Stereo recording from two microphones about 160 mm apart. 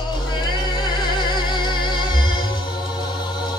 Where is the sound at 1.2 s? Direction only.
30° left (ahead or behind).